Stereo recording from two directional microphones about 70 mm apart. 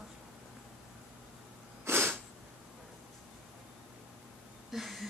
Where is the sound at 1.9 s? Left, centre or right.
Right.